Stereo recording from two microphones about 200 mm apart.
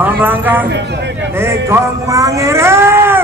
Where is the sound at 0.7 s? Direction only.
60° right (ahead or behind).